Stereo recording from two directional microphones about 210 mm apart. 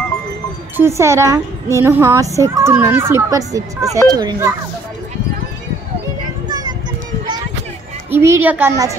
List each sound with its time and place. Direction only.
0.7 s a child's voice: 15° right (ahead or behind)
8.1 s a child's voice: 10° right (ahead or behind)